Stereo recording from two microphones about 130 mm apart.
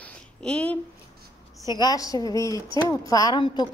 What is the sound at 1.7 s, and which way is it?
A woman's voice, 30° left (ahead or behind).